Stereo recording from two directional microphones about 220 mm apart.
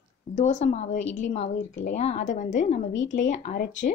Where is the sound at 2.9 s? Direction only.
60° left (ahead or behind).